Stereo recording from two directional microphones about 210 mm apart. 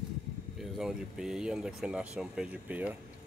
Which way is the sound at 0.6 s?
Centre (ahead or behind).